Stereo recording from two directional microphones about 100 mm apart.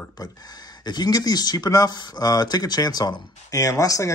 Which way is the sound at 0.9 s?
45° left (ahead or behind).